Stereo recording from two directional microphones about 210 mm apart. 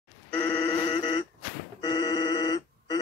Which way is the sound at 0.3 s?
15° left (ahead or behind).